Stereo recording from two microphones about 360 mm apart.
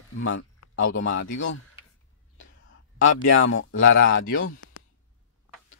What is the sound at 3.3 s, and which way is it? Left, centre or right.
Speech, left.